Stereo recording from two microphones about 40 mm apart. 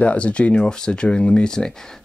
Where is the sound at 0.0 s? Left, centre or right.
Left.